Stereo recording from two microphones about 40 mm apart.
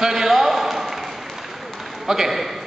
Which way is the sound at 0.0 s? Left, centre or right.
Centre.